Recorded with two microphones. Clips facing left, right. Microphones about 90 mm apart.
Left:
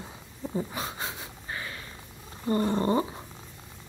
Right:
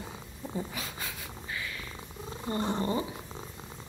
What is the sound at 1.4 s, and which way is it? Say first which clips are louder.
Purr: left 1 dB; 35° left (ahead or behind).